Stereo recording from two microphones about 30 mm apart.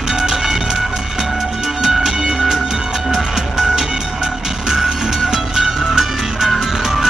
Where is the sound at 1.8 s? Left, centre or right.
Centre.